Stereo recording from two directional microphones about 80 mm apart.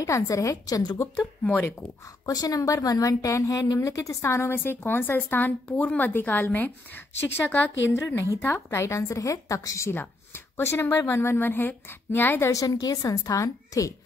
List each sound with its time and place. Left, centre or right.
0.0 s a woman's voice: left
1.4 s a woman's voice: left
2.2 s a woman's voice: left
7.9 s a woman's voice: left
12.4 s a woman's voice: left